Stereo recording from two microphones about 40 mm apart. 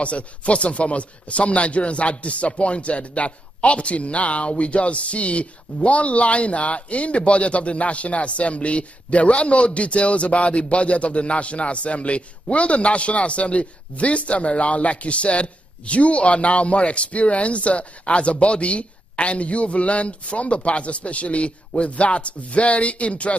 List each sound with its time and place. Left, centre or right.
0.0 s a man's voice: left